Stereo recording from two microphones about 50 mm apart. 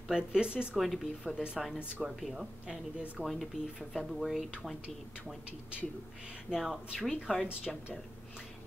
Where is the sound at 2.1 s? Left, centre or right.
Centre.